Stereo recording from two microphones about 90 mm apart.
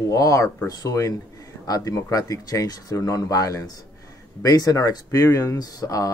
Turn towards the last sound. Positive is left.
turn(degrees=40)  # may be behind; listen again after turning